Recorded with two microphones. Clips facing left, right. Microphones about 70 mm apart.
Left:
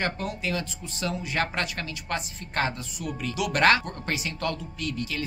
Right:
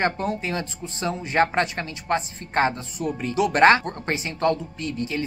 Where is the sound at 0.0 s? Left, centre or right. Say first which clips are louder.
Right 5 dB; right.